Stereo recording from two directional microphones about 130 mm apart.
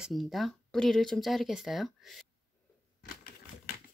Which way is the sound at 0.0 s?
Centre (ahead or behind).